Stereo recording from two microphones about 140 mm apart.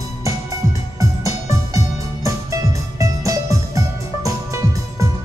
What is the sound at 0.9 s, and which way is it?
Music, 25° right (ahead or behind).